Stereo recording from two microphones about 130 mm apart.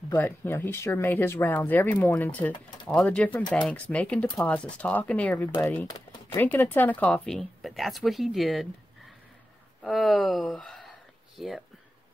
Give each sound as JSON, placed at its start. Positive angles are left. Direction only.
{"t": 0.1, "sound": "speech", "side_deg": 15}
{"t": 9.8, "sound": "speech", "side_deg": 0}